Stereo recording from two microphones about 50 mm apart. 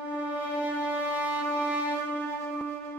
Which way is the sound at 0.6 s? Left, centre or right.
Right.